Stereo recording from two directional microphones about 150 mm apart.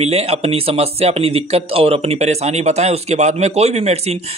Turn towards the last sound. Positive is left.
turn(degrees=-45)  # may be behind; listen again after turning